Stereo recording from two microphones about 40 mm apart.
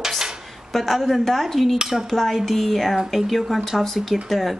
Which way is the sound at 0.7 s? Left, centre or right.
Centre.